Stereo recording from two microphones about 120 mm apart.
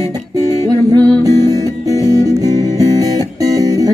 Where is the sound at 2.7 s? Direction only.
30° right (ahead or behind).